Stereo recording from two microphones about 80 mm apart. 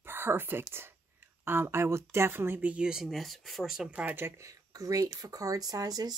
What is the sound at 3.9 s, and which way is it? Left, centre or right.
Speech, right.